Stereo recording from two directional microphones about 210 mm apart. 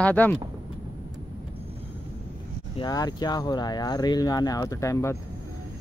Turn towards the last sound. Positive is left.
turn(degrees=15)  # may be behind; listen again after turning